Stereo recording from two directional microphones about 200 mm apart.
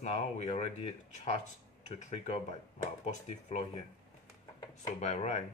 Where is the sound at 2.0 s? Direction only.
35° left (ahead or behind).